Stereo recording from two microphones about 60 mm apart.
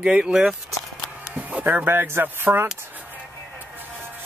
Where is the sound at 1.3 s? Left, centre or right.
Right.